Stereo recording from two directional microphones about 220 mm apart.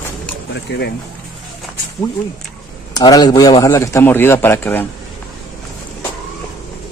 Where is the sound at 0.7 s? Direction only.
50° left (ahead or behind).